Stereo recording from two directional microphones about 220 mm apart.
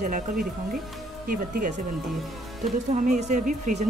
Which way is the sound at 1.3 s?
35° right (ahead or behind).